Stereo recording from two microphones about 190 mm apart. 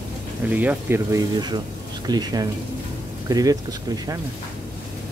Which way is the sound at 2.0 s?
20° right (ahead or behind).